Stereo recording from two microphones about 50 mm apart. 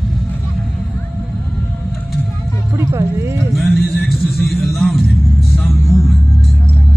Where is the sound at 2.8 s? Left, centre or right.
Right.